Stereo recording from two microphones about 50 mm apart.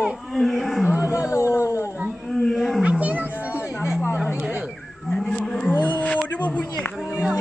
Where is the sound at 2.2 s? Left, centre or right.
Centre.